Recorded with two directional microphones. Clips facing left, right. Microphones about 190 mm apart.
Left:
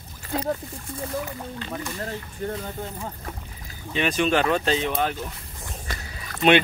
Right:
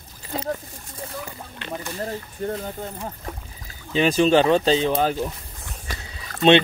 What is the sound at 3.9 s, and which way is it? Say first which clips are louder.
Speech: right 5 dB; 30° right (ahead or behind).